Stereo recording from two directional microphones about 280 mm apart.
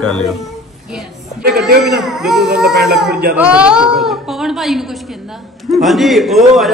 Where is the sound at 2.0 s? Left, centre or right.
Centre.